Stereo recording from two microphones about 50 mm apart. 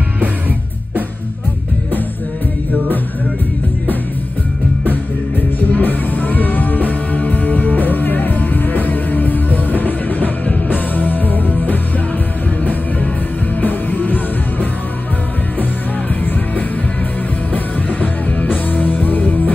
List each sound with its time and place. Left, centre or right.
5.6 s music: left
13.6 s music: left
17.5 s music: left